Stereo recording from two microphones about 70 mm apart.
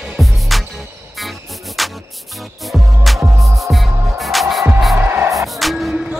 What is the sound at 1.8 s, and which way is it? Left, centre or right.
Music, centre.